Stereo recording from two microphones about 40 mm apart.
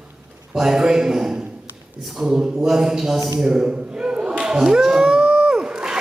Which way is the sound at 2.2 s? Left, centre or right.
Centre.